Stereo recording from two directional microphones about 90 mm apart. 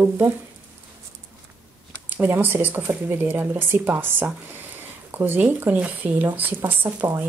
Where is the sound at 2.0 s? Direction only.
20° right (ahead or behind).